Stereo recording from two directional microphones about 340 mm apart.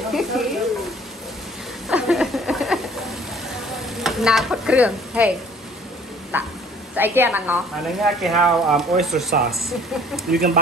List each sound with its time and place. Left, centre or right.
0.1 s speech: centre
1.9 s a sound: centre
4.0 s speech: centre
6.3 s speech: centre
10.3 s speech: right